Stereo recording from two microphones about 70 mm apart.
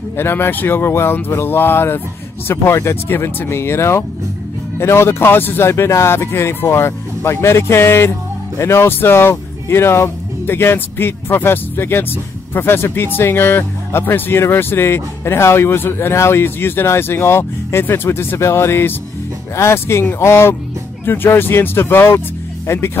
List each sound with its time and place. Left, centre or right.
0.2 s speech: left